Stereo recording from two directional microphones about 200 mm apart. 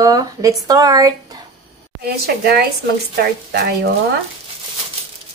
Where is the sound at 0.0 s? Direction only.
15° right (ahead or behind).